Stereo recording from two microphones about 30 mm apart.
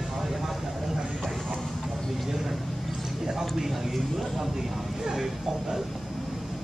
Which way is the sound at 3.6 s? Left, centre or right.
Centre.